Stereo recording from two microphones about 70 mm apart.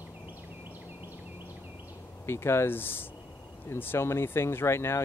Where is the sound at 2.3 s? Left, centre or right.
Left.